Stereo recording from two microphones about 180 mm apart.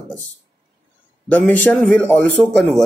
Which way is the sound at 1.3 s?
10° left (ahead or behind).